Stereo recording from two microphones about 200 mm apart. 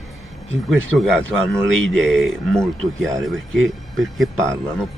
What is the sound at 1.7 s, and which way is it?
Speech, 70° right (ahead or behind).